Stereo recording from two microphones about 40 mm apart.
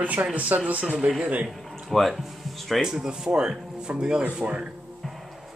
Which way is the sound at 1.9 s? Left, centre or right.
Centre.